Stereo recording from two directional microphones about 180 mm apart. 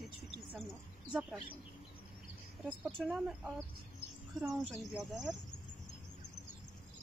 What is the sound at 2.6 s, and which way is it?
Speech, 5° right (ahead or behind).